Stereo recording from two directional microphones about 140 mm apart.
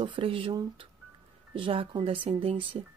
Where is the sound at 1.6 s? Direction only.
40° right (ahead or behind).